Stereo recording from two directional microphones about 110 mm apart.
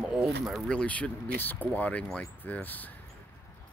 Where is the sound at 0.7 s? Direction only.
10° left (ahead or behind).